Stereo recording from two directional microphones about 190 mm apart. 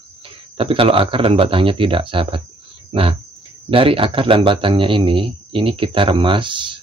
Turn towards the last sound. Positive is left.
turn(degrees=-25)  # may be behind; listen again after turning